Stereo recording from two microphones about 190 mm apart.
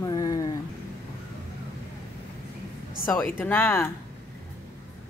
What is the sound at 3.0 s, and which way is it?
Speech, 10° left (ahead or behind).